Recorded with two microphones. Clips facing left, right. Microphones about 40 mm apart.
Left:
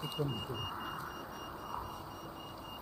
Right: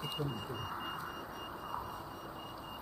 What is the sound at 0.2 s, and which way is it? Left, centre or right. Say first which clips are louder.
Speech: left 4 dB; right.